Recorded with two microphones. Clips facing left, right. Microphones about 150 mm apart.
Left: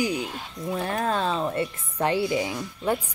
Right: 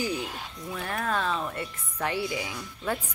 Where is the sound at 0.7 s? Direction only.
35° left (ahead or behind).